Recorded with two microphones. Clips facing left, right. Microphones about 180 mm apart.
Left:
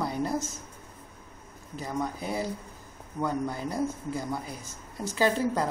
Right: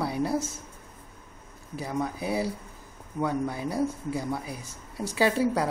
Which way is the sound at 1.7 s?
5° right (ahead or behind).